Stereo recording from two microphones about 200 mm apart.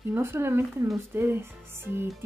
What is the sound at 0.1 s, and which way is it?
Speech, 10° right (ahead or behind).